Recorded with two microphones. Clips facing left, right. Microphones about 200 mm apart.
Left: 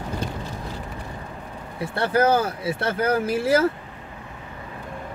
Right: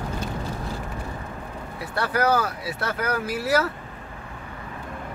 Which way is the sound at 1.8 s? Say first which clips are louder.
Left 4 dB; 25° left (ahead or behind).